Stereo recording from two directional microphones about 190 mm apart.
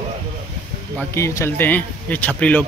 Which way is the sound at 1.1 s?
15° left (ahead or behind).